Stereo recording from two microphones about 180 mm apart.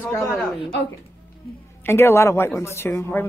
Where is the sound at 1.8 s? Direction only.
15° left (ahead or behind).